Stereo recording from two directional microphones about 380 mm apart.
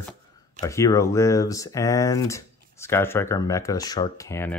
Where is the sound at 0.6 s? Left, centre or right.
Centre.